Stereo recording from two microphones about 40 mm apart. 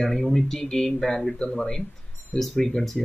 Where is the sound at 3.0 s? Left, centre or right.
Centre.